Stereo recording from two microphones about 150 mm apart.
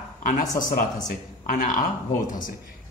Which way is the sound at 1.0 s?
60° left (ahead or behind).